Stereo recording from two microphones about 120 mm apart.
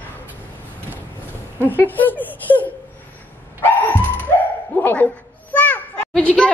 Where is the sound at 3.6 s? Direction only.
15° left (ahead or behind).